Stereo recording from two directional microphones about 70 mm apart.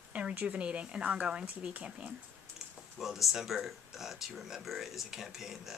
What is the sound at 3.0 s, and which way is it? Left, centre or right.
Speech, centre.